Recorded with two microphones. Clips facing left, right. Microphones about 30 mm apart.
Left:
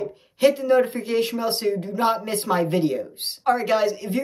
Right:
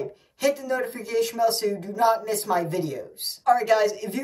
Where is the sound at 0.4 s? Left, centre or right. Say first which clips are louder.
Left 7 dB; left.